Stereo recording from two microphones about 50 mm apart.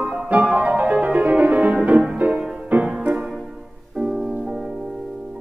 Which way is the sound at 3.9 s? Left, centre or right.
Right.